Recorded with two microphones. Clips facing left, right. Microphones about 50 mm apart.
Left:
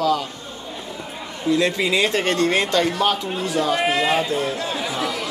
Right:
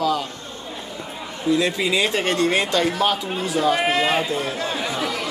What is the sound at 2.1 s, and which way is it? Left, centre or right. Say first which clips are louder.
Speech: left 1 dB; centre.